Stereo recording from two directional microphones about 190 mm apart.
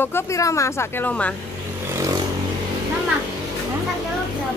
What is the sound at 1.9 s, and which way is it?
Vehicle, 20° right (ahead or behind).